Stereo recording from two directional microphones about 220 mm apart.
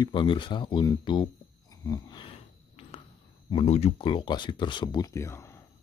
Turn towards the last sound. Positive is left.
turn(degrees=10)  # may be behind; listen again after turning